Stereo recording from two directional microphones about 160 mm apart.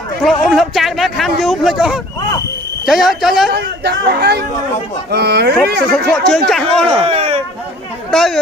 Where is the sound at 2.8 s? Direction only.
Centre (ahead or behind).